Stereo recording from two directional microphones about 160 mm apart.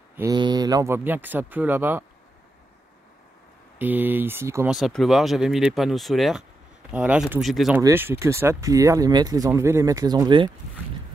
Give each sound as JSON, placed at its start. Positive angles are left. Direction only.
{"t": 0.1, "sound": "speech", "side_deg": -20}
{"t": 3.7, "sound": "speech", "side_deg": -10}
{"t": 4.6, "sound": "speech", "side_deg": 0}
{"t": 7.8, "sound": "speech", "side_deg": -15}